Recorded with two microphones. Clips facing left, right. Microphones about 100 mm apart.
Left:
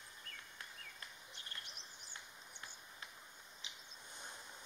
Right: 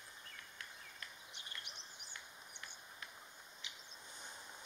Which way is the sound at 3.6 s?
30° left (ahead or behind).